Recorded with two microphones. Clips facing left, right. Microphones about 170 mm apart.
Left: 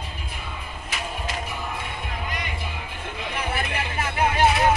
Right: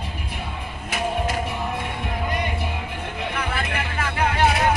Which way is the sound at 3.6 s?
25° left (ahead or behind).